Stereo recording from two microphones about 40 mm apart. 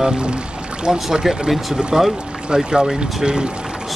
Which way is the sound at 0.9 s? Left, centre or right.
Centre.